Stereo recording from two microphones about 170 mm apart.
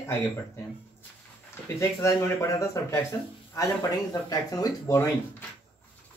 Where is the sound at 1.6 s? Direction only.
15° left (ahead or behind).